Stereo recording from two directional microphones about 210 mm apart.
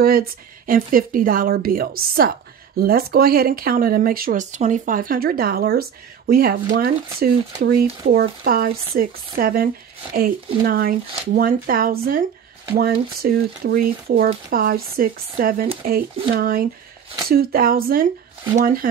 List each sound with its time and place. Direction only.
0.0 s speech: 45° right (ahead or behind)